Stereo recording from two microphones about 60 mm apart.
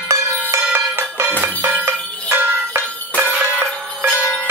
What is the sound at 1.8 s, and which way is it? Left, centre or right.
Bell, right.